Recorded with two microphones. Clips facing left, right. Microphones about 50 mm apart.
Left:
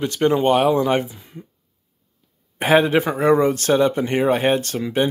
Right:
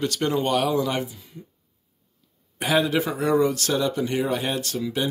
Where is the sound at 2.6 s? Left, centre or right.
Left.